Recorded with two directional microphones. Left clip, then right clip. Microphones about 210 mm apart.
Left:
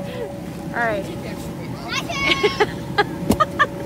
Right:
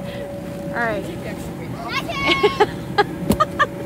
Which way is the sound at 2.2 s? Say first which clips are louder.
Right 2 dB; 15° right (ahead or behind).